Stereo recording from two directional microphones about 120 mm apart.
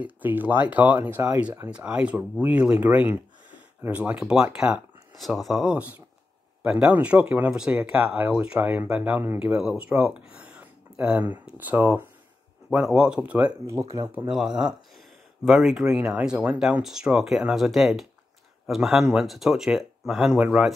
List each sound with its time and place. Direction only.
0.0 s speech: 15° right (ahead or behind)
13.8 s speech: 25° right (ahead or behind)
14.1 s speech: 5° right (ahead or behind)